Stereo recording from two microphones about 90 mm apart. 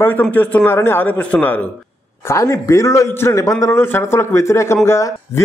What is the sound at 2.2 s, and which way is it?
A man's voice, 30° left (ahead or behind).